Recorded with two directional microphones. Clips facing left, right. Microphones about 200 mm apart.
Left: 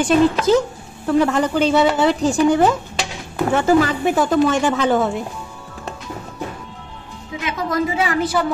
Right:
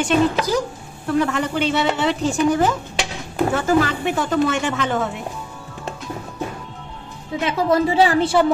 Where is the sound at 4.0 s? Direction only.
35° left (ahead or behind).